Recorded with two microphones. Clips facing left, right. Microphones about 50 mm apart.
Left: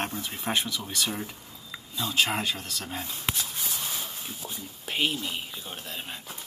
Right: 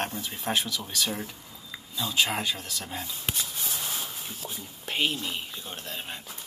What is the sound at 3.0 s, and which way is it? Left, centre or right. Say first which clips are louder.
Speech: left 1 dB; left.